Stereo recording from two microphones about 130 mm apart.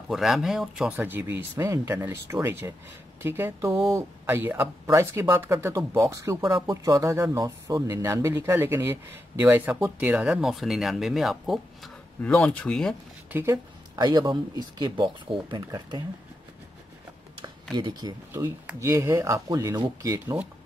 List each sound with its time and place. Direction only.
0.1 s speech: centre (ahead or behind)
13.3 s speech: 20° right (ahead or behind)
13.9 s speech: 35° right (ahead or behind)
17.7 s speech: 35° right (ahead or behind)